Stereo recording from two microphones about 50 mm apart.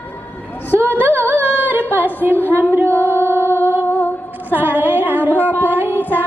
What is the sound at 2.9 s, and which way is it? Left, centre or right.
Music, left.